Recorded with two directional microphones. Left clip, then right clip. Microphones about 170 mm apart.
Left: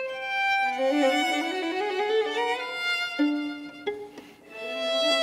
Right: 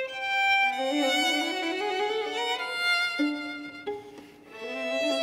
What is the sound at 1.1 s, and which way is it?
Violin, 40° left (ahead or behind).